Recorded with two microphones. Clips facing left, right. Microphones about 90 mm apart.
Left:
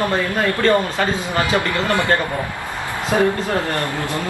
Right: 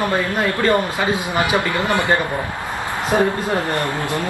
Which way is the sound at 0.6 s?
15° right (ahead or behind).